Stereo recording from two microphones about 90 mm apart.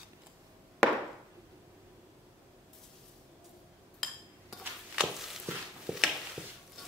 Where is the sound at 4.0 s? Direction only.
Centre (ahead or behind).